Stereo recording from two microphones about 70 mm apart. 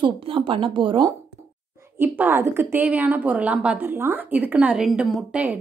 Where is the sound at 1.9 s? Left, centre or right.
Right.